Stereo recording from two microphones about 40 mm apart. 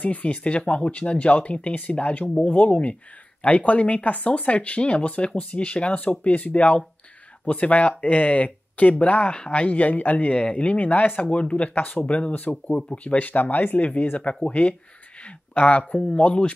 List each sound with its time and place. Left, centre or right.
0.0 s speech: left
12.4 s speech: left
13.4 s speech: left